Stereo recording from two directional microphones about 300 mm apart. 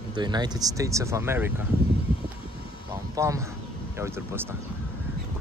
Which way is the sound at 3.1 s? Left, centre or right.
Centre.